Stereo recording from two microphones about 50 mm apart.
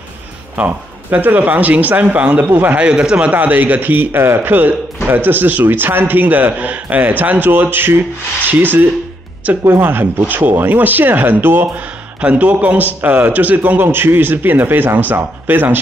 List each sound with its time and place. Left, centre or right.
0.6 s a man's voice: right
2.8 s speech: centre
3.3 s a man's voice: right
12.2 s a man's voice: right